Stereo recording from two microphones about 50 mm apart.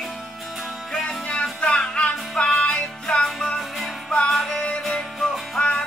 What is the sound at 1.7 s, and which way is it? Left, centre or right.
Music, left.